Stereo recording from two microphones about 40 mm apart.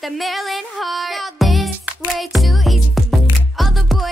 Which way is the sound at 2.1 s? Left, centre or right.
Centre.